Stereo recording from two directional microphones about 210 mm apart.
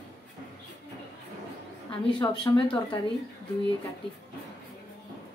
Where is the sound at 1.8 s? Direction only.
20° left (ahead or behind).